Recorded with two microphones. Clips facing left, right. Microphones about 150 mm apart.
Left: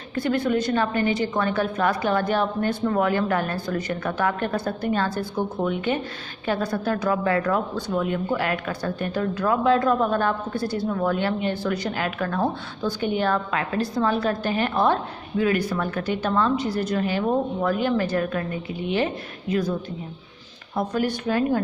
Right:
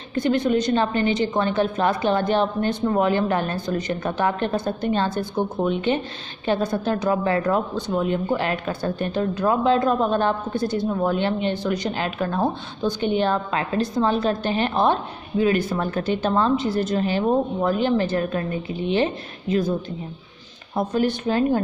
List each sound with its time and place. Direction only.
0.1 s a woman's voice: 20° right (ahead or behind)
20.7 s a woman's voice: 25° right (ahead or behind)